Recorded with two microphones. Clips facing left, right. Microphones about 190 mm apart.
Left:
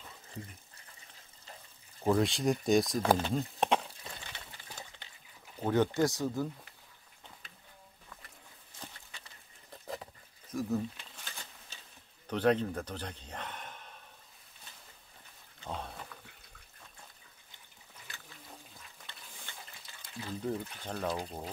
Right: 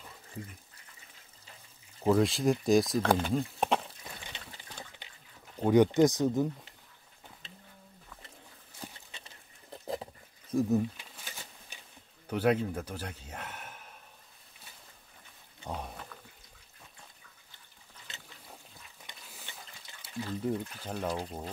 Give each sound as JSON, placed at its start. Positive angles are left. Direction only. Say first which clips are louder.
{"t": 2.0, "sound": "speech", "louder": "right 3 dB", "side_deg": 0}
{"t": 4.0, "sound": "a sound", "louder": "right 1 dB", "side_deg": -15}
{"t": 5.7, "sound": "speech", "louder": "right 6 dB", "side_deg": -15}
{"t": 9.1, "sound": "patter", "louder": "right 2 dB", "side_deg": -25}
{"t": 10.5, "sound": "speech", "louder": "right 6 dB", "side_deg": -25}
{"t": 10.8, "sound": "crumpling", "louder": "right 5 dB", "side_deg": -10}
{"t": 12.3, "sound": "a man's voice", "louder": "right 1 dB", "side_deg": -10}
{"t": 15.6, "sound": "pig", "louder": "right 1 dB", "side_deg": -15}
{"t": 18.1, "sound": "a sound", "louder": "right 2 dB", "side_deg": -20}
{"t": 19.0, "sound": "a sound", "louder": "right 2 dB", "side_deg": -5}
{"t": 19.5, "sound": "speech", "louder": "even", "side_deg": -5}